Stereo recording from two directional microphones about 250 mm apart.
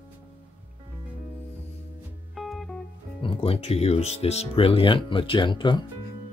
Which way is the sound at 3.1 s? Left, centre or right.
Left.